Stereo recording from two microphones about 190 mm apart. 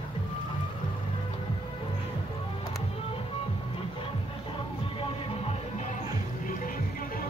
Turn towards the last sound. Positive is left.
turn(degrees=45)  # may be behind; listen again after turning